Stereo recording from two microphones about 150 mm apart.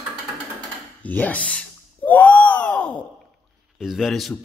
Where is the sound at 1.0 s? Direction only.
10° left (ahead or behind).